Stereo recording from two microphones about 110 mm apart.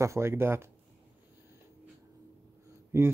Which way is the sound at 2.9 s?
25° right (ahead or behind).